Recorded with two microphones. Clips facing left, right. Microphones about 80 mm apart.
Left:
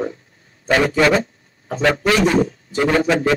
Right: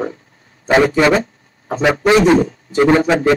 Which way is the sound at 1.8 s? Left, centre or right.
Centre.